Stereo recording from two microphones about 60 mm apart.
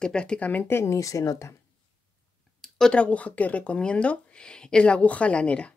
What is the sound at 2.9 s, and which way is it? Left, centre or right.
Speech, left.